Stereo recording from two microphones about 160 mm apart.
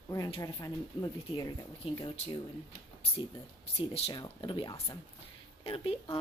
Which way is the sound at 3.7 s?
40° left (ahead or behind).